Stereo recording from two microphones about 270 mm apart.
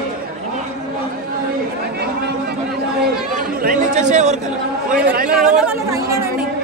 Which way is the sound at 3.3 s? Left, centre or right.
Right.